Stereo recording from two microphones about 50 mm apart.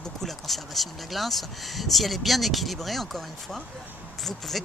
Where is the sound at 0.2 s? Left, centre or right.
Centre.